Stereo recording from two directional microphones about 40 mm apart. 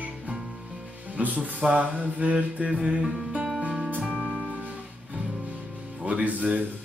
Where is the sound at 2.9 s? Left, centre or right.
Right.